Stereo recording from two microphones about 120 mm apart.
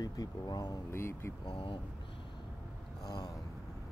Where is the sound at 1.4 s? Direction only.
45° left (ahead or behind).